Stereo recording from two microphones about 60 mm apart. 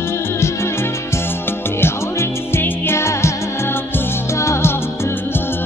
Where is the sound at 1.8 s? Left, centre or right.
Left.